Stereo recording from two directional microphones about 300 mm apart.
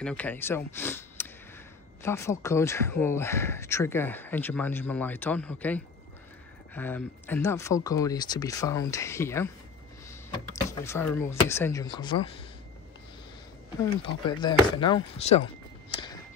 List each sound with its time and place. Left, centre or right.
0.0 s speech: centre
10.5 s speech: centre
13.7 s speech: centre
15.9 s a sound: centre